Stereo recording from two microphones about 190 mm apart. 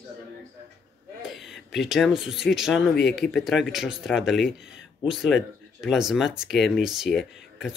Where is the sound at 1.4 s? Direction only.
Centre (ahead or behind).